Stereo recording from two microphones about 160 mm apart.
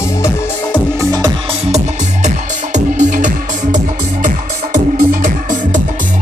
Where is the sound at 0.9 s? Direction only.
20° right (ahead or behind).